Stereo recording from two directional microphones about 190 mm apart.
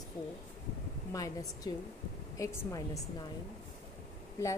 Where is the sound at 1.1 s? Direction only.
20° left (ahead or behind).